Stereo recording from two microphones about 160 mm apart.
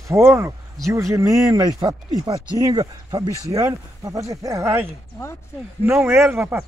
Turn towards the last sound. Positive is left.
turn(degrees=-15)  # may be behind; listen again after turning